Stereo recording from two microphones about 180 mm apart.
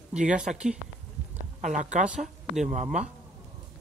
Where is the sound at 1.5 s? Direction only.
45° right (ahead or behind).